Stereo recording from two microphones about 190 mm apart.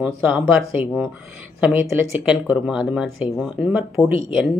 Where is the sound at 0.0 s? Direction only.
5° right (ahead or behind).